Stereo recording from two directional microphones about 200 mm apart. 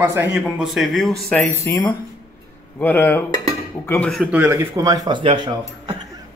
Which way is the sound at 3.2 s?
40° right (ahead or behind).